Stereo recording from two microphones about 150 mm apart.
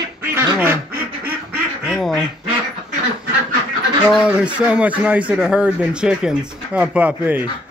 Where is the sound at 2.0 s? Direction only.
Centre (ahead or behind).